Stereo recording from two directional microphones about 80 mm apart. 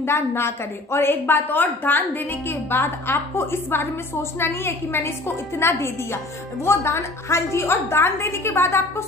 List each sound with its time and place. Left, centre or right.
0.0 s a woman's voice: left